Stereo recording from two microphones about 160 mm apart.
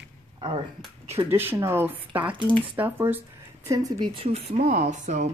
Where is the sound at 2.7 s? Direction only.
15° right (ahead or behind).